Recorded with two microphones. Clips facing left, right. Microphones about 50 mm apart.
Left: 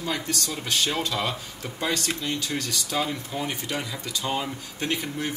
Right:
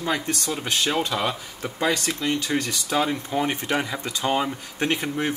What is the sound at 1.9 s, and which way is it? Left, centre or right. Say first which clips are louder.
Speech: right 3 dB; right.